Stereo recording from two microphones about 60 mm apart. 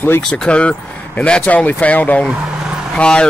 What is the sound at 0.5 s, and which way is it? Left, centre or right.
Speech, centre.